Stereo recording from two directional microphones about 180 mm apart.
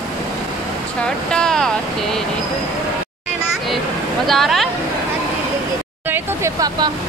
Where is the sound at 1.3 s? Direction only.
5° left (ahead or behind).